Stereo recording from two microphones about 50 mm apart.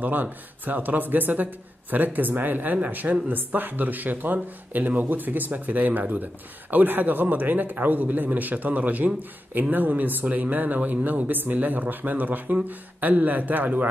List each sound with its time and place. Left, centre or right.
0.0 s a man's voice: right